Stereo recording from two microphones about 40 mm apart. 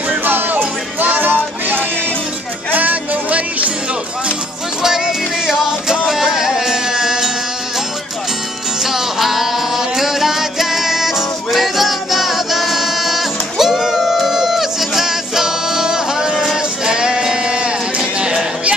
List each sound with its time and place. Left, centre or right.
0.2 s music: right
2.7 s music: right
5.5 s music: centre
8.8 s music: centre
16.8 s sheep: centre